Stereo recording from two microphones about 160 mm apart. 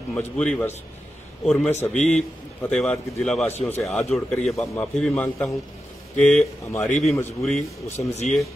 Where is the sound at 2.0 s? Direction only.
45° left (ahead or behind).